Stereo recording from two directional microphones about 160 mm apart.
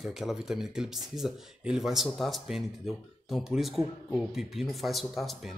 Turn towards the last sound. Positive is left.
turn(degrees=0)  # may be behind; listen again after turning